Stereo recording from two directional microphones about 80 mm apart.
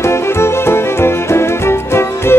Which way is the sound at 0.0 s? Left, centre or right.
Left.